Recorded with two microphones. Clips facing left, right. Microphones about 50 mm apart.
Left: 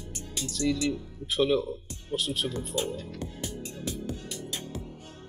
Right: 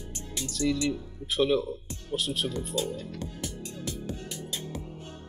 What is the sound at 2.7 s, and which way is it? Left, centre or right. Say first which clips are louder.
Speech: even; centre.